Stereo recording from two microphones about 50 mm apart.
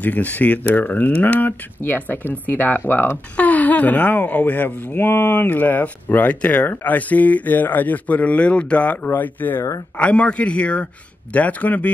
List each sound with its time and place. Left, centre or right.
0.0 s speech: left
3.3 s speech: left
9.9 s a man's voice: left